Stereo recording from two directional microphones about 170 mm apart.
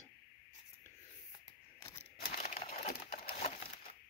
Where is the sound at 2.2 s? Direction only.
40° left (ahead or behind).